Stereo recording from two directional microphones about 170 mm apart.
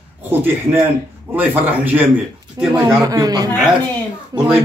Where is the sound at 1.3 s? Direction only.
10° right (ahead or behind).